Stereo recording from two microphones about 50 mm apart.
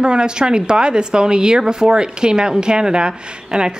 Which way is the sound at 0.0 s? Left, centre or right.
Centre.